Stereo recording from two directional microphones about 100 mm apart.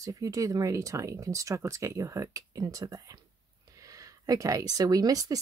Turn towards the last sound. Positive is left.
turn(degrees=-35)  # may be behind; listen again after turning